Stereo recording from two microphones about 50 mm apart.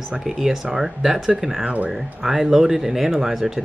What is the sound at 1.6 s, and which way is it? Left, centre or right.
Speech, right.